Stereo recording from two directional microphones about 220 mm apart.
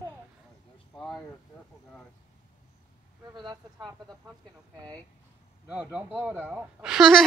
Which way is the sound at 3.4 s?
20° right (ahead or behind).